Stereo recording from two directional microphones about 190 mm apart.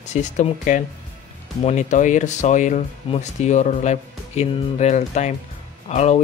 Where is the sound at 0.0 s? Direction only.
40° left (ahead or behind).